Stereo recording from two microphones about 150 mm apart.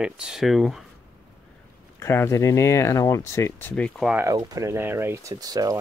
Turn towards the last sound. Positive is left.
turn(degrees=-25)  # may be behind; listen again after turning